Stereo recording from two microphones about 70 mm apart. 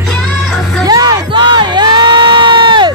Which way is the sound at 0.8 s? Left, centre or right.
Right.